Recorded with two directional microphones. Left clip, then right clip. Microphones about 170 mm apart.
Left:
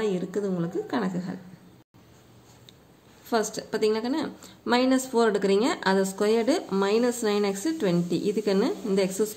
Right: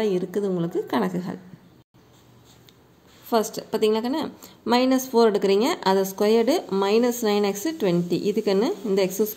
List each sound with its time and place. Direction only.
0.0 s a woman's voice: 20° right (ahead or behind)
3.3 s a woman's voice: 10° right (ahead or behind)